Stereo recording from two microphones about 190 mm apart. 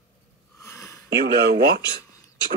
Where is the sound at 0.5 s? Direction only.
15° left (ahead or behind).